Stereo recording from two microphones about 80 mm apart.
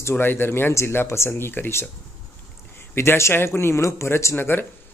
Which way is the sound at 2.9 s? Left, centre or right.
Left.